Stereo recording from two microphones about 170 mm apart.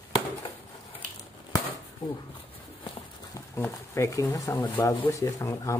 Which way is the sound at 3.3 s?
15° left (ahead or behind).